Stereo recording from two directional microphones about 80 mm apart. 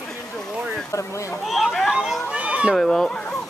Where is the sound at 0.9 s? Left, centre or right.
Left.